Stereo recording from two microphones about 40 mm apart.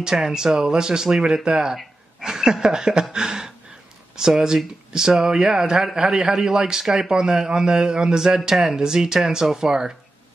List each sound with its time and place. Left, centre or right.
0.0 s a man's voice: centre